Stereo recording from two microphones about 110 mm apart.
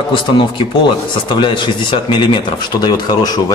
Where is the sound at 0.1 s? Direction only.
50° left (ahead or behind).